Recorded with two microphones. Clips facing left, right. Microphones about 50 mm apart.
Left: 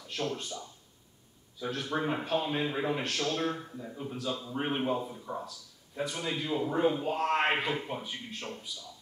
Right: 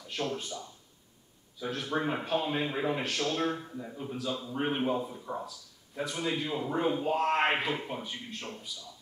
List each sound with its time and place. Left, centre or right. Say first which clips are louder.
0.0 s a man's voice: even; centre